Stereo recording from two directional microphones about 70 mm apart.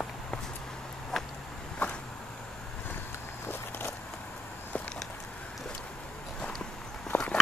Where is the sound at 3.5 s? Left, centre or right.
Left.